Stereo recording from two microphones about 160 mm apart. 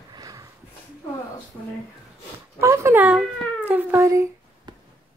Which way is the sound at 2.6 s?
15° right (ahead or behind).